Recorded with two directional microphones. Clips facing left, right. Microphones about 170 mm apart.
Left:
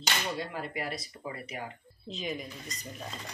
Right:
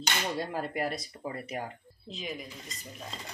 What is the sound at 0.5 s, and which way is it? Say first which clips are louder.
Speech: right 4 dB; 45° right (ahead or behind).